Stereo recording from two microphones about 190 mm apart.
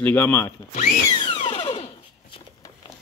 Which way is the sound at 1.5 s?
25° left (ahead or behind).